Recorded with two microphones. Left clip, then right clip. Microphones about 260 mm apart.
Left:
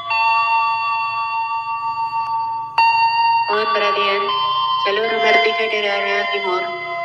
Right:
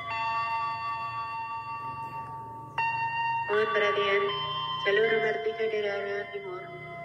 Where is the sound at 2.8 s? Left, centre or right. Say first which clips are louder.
Left 15 dB; left.